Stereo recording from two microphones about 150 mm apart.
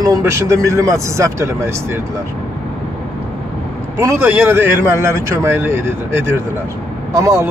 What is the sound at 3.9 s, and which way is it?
A man's voice, 15° right (ahead or behind).